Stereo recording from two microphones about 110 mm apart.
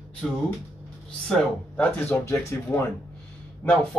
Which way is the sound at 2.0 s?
20° left (ahead or behind).